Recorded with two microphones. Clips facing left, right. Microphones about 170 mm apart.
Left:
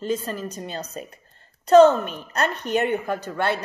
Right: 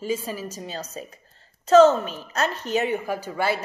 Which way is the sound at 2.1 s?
5° right (ahead or behind).